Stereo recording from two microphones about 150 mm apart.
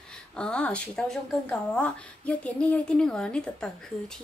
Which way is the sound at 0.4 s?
5° left (ahead or behind).